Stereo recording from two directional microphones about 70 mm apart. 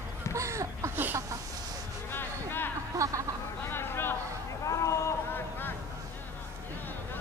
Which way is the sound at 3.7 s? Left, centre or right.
Left.